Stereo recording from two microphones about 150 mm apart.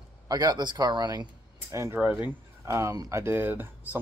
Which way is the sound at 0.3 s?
25° right (ahead or behind).